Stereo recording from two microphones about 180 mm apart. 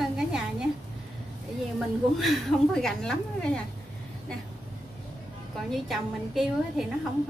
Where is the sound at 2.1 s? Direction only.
Centre (ahead or behind).